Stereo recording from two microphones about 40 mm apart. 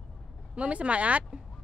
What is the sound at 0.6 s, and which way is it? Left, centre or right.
Speech, right.